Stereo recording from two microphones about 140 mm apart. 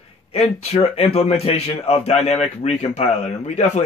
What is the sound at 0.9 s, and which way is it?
A man's voice, 45° left (ahead or behind).